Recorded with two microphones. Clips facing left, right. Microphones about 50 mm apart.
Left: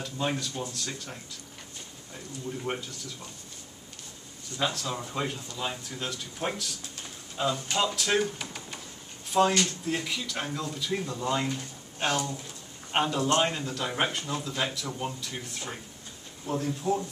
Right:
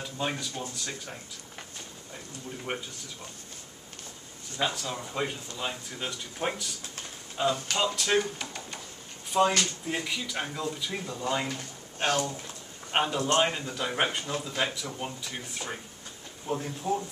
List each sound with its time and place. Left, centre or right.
0.0 s speech: centre
2.7 s speech: centre
4.6 s speech: centre
12.0 s speech: right
12.9 s speech: centre